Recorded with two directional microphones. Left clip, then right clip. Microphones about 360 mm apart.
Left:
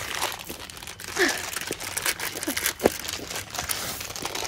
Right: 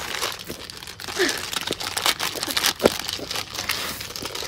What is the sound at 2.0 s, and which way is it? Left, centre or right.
Crumpling, centre.